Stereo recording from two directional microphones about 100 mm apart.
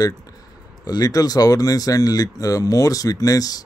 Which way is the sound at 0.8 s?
35° left (ahead or behind).